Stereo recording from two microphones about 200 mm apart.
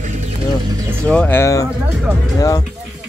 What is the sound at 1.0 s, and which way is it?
Speech, 5° left (ahead or behind).